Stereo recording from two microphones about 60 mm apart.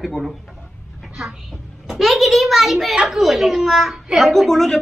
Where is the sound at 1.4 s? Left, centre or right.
Centre.